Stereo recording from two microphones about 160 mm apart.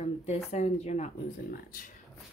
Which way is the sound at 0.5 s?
45° left (ahead or behind).